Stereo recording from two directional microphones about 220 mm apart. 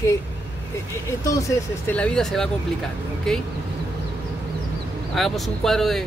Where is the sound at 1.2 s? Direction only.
15° left (ahead or behind).